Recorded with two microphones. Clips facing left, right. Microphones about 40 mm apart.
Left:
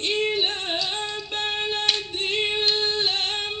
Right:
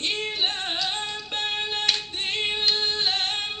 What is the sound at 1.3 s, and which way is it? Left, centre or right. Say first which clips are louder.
Music: left 1 dB; left.